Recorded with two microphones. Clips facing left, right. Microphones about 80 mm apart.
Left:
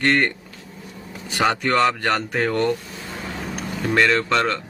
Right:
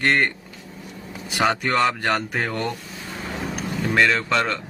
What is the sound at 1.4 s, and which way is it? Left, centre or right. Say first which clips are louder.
Speech: left 1 dB; centre.